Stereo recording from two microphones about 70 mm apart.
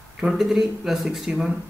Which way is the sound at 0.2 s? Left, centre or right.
Centre.